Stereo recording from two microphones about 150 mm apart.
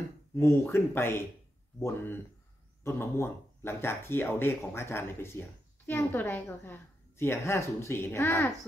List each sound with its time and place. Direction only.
0.4 s speech: 15° left (ahead or behind)